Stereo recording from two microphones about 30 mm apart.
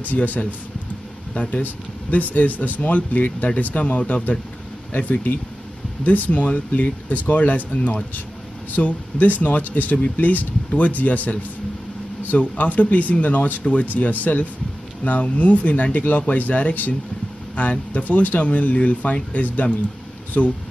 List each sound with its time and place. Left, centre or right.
0.1 s speech: left
1.3 s speech: left
1.6 s speech: left